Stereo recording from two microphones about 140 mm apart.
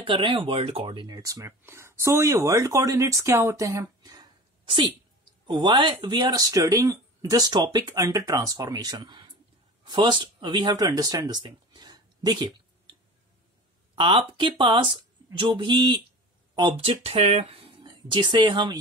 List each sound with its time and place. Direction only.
0.0 s speech: 35° right (ahead or behind)
1.1 s speech: 25° right (ahead or behind)
13.9 s speech: 35° right (ahead or behind)